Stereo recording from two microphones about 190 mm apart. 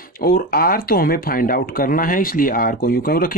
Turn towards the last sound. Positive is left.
turn(degrees=50)  # may be behind; listen again after turning